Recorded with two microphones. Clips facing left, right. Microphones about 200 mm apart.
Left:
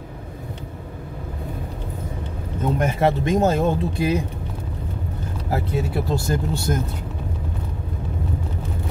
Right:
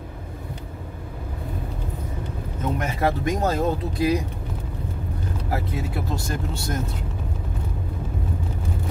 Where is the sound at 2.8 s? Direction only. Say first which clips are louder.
Left 4 dB; 25° left (ahead or behind).